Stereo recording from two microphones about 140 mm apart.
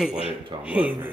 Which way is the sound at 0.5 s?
35° right (ahead or behind).